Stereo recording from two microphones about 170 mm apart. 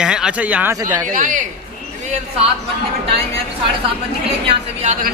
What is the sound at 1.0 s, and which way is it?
Speech, 50° right (ahead or behind).